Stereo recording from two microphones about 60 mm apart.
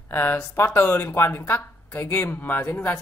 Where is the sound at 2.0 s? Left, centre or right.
Left.